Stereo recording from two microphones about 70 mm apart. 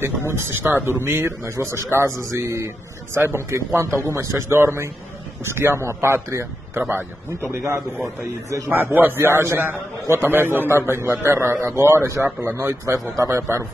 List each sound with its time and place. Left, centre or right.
0.3 s a man's voice: right
8.6 s a man's voice: right
10.3 s a man's voice: right